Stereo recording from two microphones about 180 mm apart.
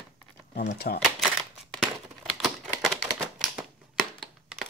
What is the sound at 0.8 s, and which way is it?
Speech, 50° left (ahead or behind).